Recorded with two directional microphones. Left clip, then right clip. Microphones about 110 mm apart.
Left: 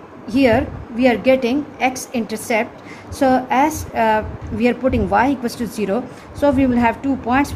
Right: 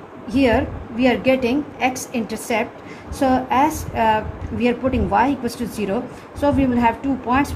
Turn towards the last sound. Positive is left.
turn(degrees=70)  # may be behind; listen again after turning